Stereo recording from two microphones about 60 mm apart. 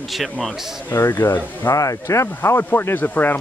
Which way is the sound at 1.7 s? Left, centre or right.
Left.